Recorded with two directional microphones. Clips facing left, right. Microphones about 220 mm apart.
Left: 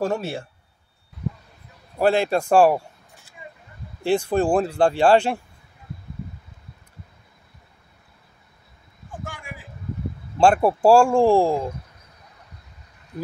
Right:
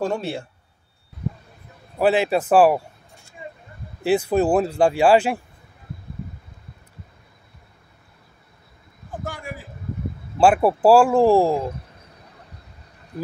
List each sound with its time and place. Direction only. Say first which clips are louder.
0.0 s speech: even; 5° left (ahead or behind)
2.0 s speech: right 1 dB; 5° right (ahead or behind)
9.1 s a sound: right 5 dB; 35° right (ahead or behind)
10.3 s speech: right 1 dB; 5° right (ahead or behind)